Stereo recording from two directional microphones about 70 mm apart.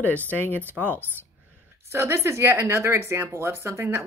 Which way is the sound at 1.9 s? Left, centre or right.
Right.